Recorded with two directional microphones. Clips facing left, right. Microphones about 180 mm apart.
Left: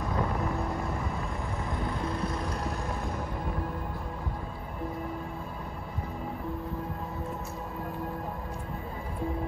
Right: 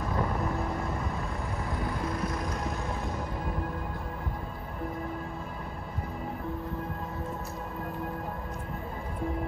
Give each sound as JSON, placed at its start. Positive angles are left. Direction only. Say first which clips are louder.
{"t": 0.1, "sound": "vehicle", "louder": "even", "side_deg": 0}
{"t": 2.2, "sound": "music", "louder": "even", "side_deg": 30}